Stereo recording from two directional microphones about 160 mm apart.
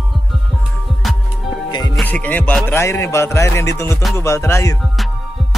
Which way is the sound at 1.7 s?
25° left (ahead or behind).